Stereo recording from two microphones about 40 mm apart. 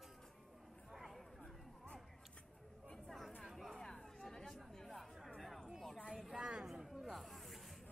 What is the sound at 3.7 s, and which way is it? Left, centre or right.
Chatter, centre.